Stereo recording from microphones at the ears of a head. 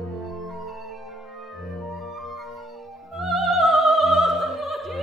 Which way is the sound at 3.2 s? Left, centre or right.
Centre.